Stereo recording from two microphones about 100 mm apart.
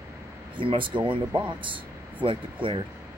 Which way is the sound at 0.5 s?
55° right (ahead or behind).